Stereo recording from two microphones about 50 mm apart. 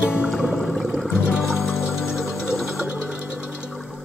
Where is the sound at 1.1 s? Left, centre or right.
Right.